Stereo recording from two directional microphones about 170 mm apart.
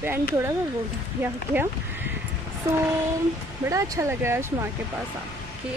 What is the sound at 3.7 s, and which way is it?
Speech, 20° right (ahead or behind).